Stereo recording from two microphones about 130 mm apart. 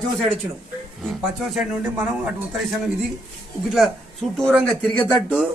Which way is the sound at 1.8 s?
15° right (ahead or behind).